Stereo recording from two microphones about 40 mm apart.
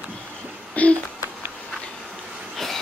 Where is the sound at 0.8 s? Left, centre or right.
Left.